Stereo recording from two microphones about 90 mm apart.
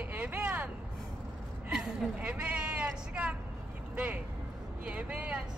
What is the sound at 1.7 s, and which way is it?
A woman's voice, 10° right (ahead or behind).